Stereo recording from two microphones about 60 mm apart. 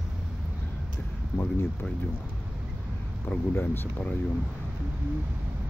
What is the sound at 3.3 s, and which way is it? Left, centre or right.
Speech, left.